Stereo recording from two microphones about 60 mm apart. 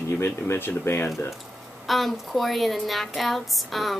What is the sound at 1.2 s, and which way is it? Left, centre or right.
Speech, left.